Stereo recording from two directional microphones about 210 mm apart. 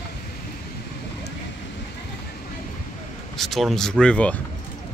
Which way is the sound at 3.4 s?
Centre (ahead or behind).